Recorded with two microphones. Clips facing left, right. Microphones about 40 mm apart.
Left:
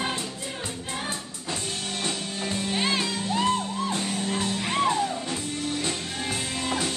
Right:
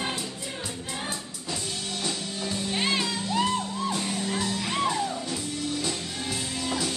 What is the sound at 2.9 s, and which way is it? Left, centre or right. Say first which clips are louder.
Music: even; left.